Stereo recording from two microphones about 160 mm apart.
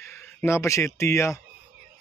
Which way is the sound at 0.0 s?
15° left (ahead or behind).